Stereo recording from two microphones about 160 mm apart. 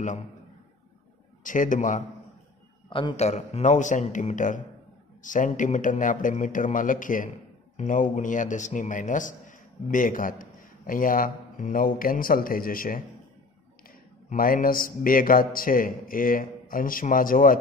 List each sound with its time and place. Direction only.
1.4 s a man's voice: 55° left (ahead or behind)
2.9 s a man's voice: 35° left (ahead or behind); by 13.0 s 60° left (ahead or behind)
14.3 s a man's voice: 60° left (ahead or behind)